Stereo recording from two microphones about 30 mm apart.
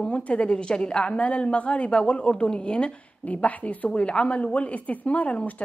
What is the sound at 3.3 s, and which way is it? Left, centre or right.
Speech, left.